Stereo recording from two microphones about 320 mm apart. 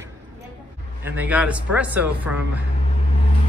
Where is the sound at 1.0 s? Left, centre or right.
Centre.